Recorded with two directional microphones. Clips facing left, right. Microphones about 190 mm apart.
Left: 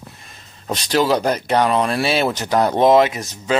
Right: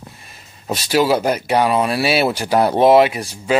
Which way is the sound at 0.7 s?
10° right (ahead or behind).